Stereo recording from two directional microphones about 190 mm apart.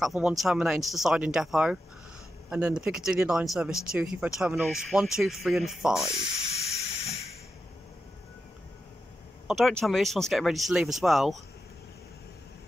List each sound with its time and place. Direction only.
0.0 s speech: centre (ahead or behind)
6.1 s hiss: 35° left (ahead or behind)
9.5 s speech: centre (ahead or behind)